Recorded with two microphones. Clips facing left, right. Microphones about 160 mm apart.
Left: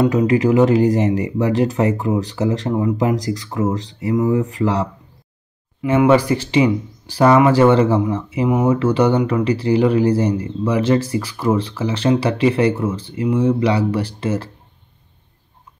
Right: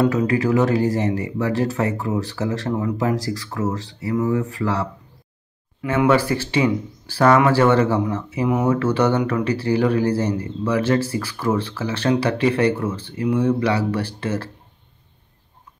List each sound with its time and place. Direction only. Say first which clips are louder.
0.0 s speech: left 3 dB; 20° left (ahead or behind)